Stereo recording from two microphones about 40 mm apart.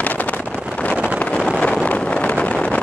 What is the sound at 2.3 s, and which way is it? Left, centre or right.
Vehicle, left.